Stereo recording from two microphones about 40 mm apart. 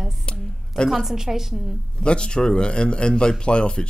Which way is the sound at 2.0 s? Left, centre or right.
Left.